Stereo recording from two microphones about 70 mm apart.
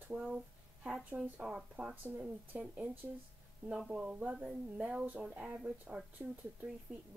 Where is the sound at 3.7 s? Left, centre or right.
Centre.